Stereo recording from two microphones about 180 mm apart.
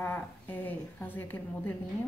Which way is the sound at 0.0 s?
10° left (ahead or behind).